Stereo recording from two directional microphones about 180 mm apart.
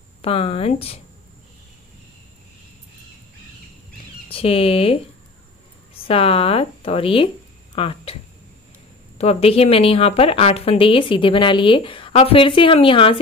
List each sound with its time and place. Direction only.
0.2 s a woman's voice: 30° left (ahead or behind)
4.3 s speech: 30° left (ahead or behind)
6.0 s a woman's voice: 30° left (ahead or behind)
9.2 s a woman's voice: 35° left (ahead or behind)